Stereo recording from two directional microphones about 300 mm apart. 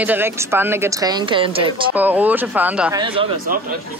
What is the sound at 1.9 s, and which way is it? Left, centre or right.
Speech, centre.